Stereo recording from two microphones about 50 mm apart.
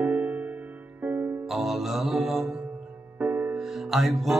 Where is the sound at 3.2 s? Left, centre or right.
Right.